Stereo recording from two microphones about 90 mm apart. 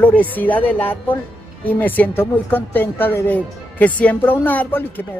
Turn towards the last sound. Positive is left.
turn(degrees=20)  # may be behind; listen again after turning